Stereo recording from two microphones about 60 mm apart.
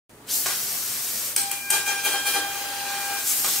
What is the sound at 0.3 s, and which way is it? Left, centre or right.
Steam, centre.